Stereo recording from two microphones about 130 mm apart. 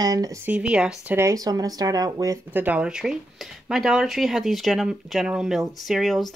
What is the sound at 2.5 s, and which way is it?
Speech, 15° right (ahead or behind).